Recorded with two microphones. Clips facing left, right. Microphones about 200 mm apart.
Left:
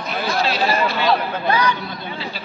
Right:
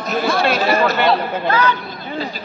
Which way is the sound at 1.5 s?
15° left (ahead or behind).